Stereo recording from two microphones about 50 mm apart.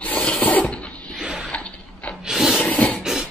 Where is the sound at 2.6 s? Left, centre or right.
Left.